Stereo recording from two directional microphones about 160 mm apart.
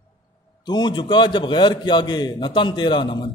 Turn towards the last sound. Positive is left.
turn(degrees=30)  # may be behind; listen again after turning